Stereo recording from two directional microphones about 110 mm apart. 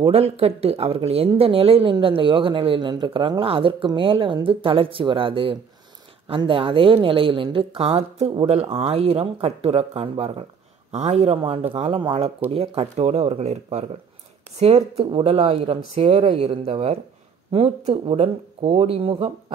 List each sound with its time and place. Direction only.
0.0 s a woman's voice: 65° right (ahead or behind)
10.9 s a woman's voice: 90° right; by 19.3 s 60° right (ahead or behind)